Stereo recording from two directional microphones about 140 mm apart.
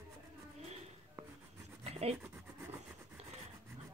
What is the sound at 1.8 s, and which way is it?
Rub, 50° right (ahead or behind).